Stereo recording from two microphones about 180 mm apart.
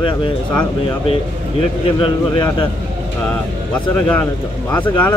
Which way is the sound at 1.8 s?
30° left (ahead or behind).